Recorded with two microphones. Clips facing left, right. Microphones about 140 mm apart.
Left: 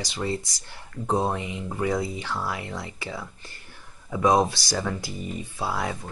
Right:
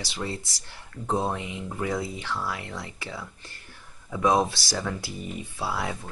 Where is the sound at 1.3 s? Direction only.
Centre (ahead or behind).